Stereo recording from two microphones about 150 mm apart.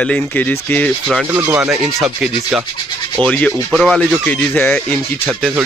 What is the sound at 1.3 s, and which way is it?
Speech, 15° right (ahead or behind).